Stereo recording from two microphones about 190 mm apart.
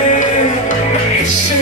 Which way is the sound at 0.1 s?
40° left (ahead or behind).